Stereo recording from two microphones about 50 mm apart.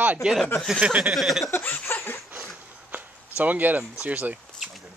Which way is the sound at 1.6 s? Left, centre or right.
Left.